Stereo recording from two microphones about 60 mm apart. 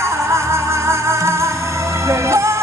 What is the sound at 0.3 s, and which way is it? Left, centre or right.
Music, right.